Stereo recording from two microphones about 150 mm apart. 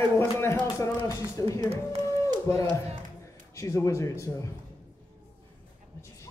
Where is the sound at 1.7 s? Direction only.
40° right (ahead or behind).